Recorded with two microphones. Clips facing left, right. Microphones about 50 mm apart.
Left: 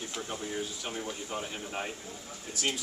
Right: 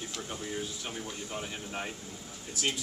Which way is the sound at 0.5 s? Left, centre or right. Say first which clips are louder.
Left 1 dB; centre.